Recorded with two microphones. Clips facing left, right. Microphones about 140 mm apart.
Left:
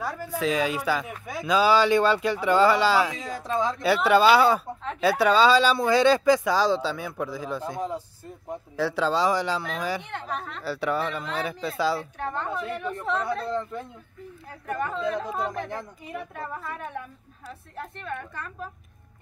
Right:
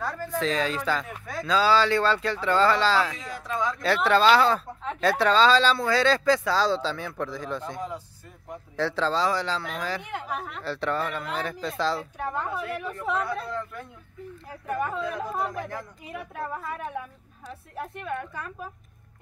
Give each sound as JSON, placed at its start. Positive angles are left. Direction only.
{"t": 0.0, "sound": "speech", "side_deg": 10}
{"t": 3.2, "sound": "speech", "side_deg": 35}
{"t": 3.8, "sound": "speech", "side_deg": 10}
{"t": 10.0, "sound": "a woman's voice", "side_deg": -5}
{"t": 10.6, "sound": "speech", "side_deg": 5}
{"t": 12.2, "sound": "a woman's voice", "side_deg": -5}
{"t": 13.5, "sound": "speech", "side_deg": 25}
{"t": 14.5, "sound": "a woman's voice", "side_deg": -5}